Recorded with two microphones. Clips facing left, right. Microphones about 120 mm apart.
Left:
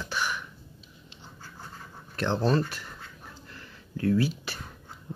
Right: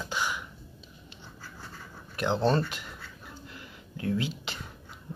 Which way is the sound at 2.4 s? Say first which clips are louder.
Even; 30° right (ahead or behind).